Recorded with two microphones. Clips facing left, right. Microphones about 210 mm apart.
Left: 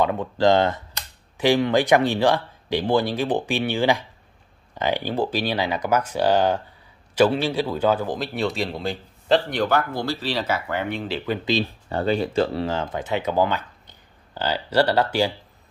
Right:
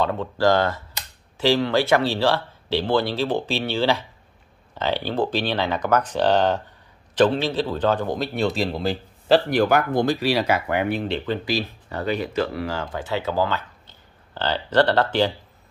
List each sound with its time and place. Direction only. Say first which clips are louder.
0.0 s a man's voice: left 1 dB; 15° left (ahead or behind); by 11.0 s 15° right (ahead or behind)
11.0 s a man's voice: right 1 dB; 5° left (ahead or behind)
11.4 s speech: left 2 dB; 25° left (ahead or behind); by 15.3 s 10° left (ahead or behind)